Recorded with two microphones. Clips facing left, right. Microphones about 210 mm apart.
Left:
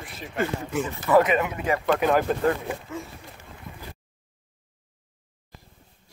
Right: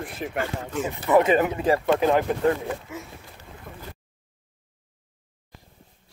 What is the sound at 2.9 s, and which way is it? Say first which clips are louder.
Speech: left 2 dB; 10° right (ahead or behind).